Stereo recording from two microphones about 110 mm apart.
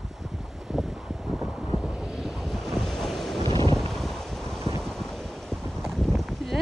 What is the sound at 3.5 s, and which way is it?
Wind noise, 50° right (ahead or behind).